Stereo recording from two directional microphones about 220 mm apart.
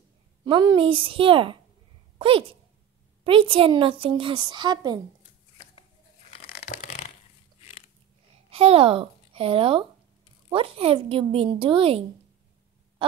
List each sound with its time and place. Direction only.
0.5 s a woman's voice: 20° right (ahead or behind)
6.6 s a sound: 30° left (ahead or behind)
8.5 s a woman's voice: 25° right (ahead or behind)